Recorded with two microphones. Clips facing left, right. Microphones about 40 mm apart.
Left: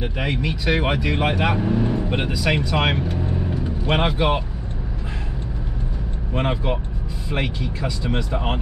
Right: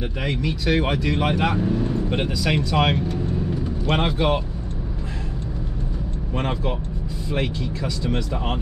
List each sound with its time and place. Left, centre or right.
0.0 s speech: centre
2.0 s speech: centre
6.3 s speech: centre